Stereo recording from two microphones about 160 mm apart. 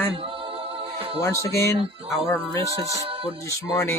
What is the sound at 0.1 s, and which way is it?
Music, 35° right (ahead or behind).